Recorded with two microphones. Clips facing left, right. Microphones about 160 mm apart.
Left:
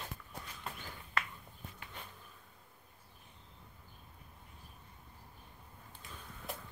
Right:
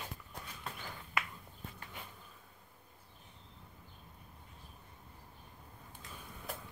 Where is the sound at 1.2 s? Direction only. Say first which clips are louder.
Even; 10° right (ahead or behind).